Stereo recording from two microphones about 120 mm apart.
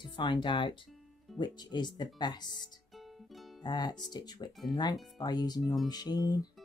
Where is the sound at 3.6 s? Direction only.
35° left (ahead or behind).